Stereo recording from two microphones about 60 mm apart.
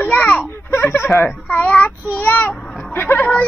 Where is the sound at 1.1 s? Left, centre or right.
Left.